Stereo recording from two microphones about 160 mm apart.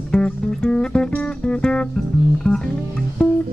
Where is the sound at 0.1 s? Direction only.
5° left (ahead or behind).